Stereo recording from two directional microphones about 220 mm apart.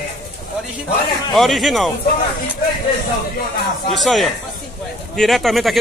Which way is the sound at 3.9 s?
Centre (ahead or behind).